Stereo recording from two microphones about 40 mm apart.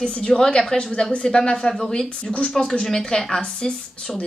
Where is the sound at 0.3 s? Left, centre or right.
Centre.